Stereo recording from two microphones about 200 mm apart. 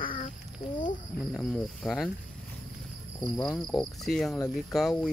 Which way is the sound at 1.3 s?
5° left (ahead or behind).